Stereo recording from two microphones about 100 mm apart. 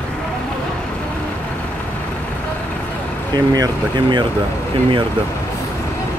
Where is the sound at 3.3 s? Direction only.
40° right (ahead or behind).